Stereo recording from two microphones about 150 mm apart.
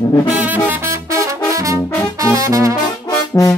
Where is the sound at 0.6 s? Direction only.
20° right (ahead or behind).